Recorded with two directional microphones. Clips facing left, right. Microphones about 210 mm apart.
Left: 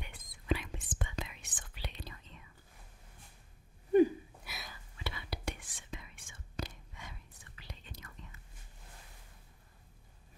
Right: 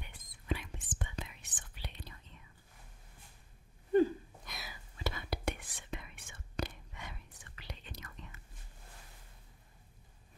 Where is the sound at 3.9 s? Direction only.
15° left (ahead or behind).